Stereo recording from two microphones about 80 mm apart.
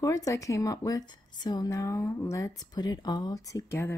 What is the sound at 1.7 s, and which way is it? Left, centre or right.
Speech, left.